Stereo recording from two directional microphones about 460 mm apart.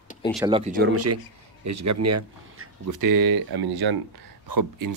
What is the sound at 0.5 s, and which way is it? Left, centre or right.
Speech, centre.